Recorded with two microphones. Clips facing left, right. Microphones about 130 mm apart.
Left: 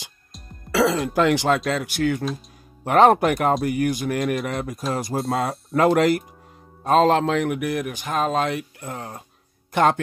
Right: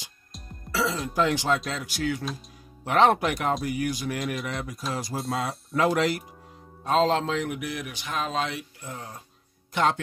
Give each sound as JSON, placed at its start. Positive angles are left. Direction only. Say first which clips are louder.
{"t": 0.7, "sound": "speech", "louder": "left 8 dB", "side_deg": 70}